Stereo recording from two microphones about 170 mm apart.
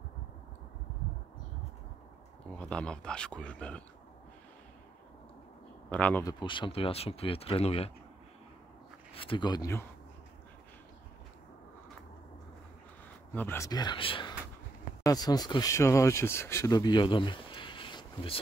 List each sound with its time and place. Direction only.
2.4 s speech: 5° left (ahead or behind)
5.9 s speech: 10° left (ahead or behind)
6.2 s speech: 30° left (ahead or behind)
9.1 s speech: 30° left (ahead or behind)
13.3 s speech: 10° left (ahead or behind)
13.7 s speech: 25° left (ahead or behind)